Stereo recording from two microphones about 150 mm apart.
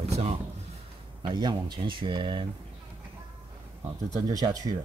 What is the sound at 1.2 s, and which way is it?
Speech, 30° right (ahead or behind).